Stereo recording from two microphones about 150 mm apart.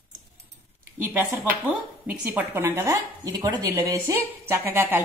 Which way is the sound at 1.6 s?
10° right (ahead or behind).